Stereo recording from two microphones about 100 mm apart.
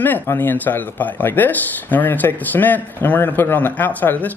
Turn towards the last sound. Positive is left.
turn(degrees=15)  # may be behind; listen again after turning